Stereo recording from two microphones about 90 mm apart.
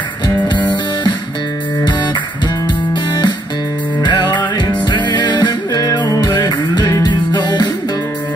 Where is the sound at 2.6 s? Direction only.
55° left (ahead or behind).